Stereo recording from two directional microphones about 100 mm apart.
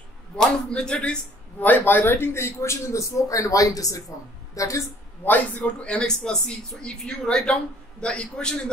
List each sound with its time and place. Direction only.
0.4 s a woman's voice: 10° left (ahead or behind); by 4.8 s 35° left (ahead or behind)
5.2 s speech: 15° left (ahead or behind)